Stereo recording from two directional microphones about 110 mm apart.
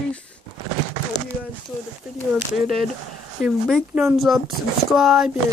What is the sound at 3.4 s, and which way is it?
Speech, 5° left (ahead or behind).